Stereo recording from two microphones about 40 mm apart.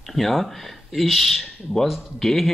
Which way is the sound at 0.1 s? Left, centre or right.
Centre.